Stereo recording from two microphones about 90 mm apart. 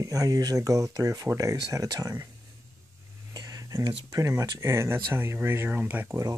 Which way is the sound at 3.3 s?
45° right (ahead or behind).